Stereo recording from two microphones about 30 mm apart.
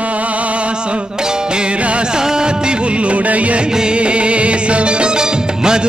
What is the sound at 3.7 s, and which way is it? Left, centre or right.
Music, right.